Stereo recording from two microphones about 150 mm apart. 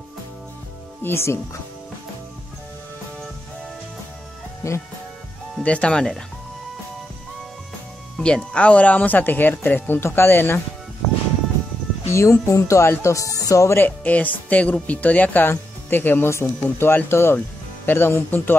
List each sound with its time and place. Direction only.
1.0 s speech: 15° left (ahead or behind)
4.6 s speech: 20° left (ahead or behind)
5.6 s speech: 5° left (ahead or behind)
8.2 s speech: 5° left (ahead or behind)
12.1 s speech: 20° left (ahead or behind)